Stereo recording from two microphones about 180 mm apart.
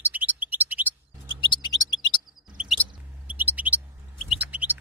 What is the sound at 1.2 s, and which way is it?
Chirp, 25° left (ahead or behind).